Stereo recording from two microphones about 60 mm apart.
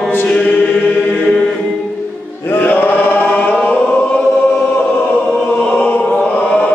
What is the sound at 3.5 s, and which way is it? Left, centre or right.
Choir, left.